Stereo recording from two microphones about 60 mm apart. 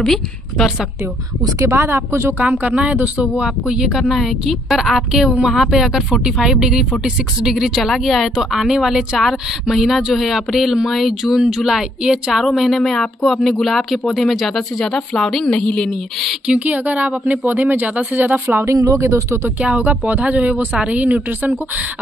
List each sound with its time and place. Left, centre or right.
0.0 s a woman's voice: centre
1.7 s a woman's voice: right
2.4 s a woman's voice: right; by 16.3 s centre
16.4 s a woman's voice: right
18.6 s speech: right
19.6 s speech: right